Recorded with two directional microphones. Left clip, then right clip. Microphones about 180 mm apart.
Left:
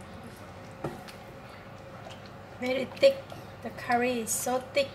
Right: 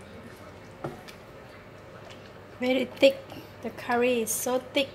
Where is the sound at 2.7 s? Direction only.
50° right (ahead or behind).